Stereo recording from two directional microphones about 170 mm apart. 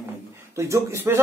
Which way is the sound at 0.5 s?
15° right (ahead or behind).